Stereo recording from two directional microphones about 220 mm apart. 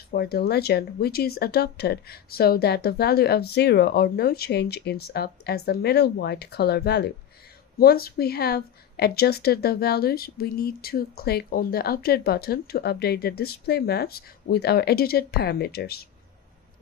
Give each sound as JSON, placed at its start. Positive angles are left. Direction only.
{"t": 0.1, "sound": "speech", "side_deg": 45}